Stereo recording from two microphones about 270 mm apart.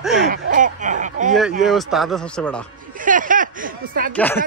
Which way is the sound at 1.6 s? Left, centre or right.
Centre.